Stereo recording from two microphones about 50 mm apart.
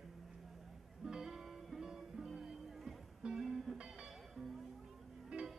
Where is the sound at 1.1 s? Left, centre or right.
Centre.